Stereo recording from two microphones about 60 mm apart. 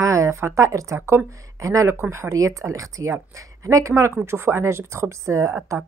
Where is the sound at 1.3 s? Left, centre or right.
Right.